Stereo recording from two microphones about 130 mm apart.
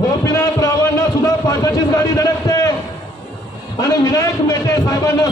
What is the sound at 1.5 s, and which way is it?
A man's voice, 25° left (ahead or behind).